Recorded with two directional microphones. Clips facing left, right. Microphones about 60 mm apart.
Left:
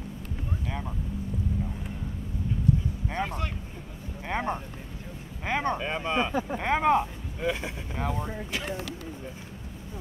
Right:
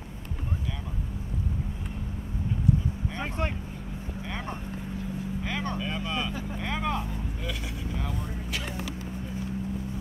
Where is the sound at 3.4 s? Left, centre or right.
Right.